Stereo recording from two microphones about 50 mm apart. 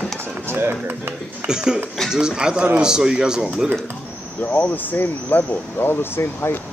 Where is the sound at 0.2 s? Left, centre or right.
Right.